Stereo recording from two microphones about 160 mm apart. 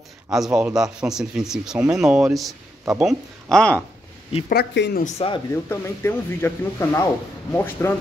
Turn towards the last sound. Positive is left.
turn(degrees=15)  # may be behind; listen again after turning